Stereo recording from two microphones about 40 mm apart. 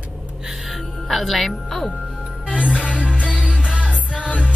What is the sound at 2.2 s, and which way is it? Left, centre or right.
Music, right.